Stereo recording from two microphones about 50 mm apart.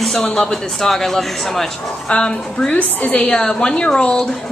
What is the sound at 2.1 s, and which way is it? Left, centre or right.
Speech, left.